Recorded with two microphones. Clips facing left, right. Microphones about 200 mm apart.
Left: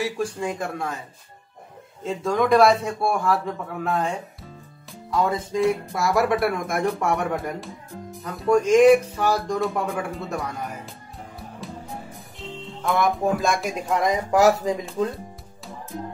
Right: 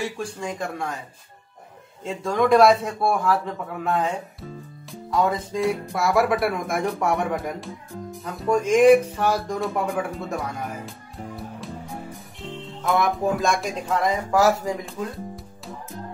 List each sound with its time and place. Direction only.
0.0 s speech: 5° left (ahead or behind)
2.0 s speech: centre (ahead or behind)
11.6 s music: centre (ahead or behind)
12.4 s speech: centre (ahead or behind)
13.8 s speech: 15° left (ahead or behind)